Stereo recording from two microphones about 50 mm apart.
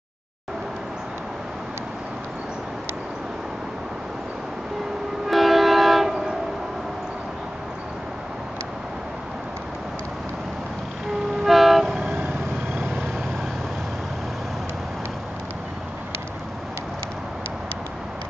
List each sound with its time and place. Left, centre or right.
5.3 s train: centre
11.4 s train: centre
12.1 s vehicle: right